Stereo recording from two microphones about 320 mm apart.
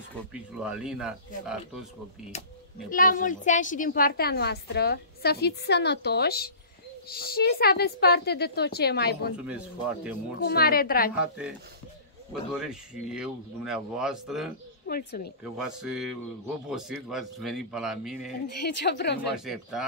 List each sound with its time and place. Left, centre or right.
0.3 s speech: centre
2.9 s a woman's voice: left
10.4 s a woman's voice: left
11.1 s speech: centre
14.9 s a woman's voice: left
15.5 s speech: centre
18.6 s speech: left
19.3 s speech: centre